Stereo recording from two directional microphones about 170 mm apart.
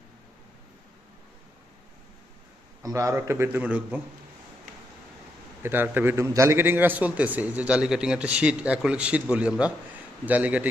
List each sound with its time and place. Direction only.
2.8 s a man's voice: 15° right (ahead or behind)
5.6 s a man's voice: 10° right (ahead or behind)